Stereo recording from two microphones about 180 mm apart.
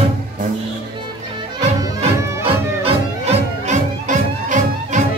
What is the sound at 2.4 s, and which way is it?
Music, 35° right (ahead or behind).